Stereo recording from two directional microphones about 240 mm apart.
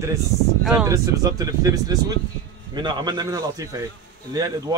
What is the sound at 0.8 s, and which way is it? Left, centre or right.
Speech, centre.